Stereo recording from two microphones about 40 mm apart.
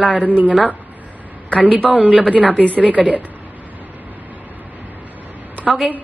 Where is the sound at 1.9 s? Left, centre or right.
Right.